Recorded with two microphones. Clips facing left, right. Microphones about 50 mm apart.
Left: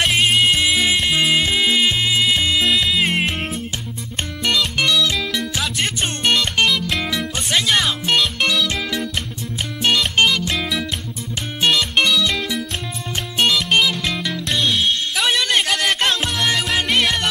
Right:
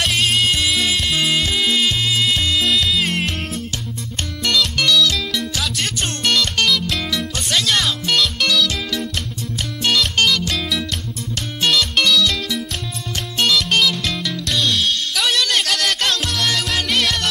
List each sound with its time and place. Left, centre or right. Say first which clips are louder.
0.0 s music: left 2 dB; left